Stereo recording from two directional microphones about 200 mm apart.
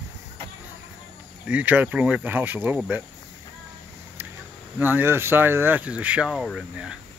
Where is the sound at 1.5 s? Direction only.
10° right (ahead or behind).